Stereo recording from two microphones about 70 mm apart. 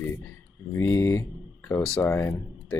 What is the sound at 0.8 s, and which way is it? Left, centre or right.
Speech, left.